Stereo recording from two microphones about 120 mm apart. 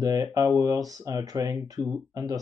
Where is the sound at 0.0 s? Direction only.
30° right (ahead or behind).